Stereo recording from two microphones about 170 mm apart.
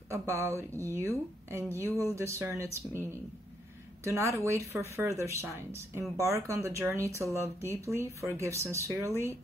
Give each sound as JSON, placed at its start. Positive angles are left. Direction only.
{"t": 0.1, "sound": "a woman's voice", "side_deg": -15}